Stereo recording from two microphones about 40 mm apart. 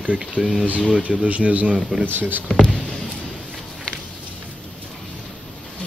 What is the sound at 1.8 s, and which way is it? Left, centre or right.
Speech, centre.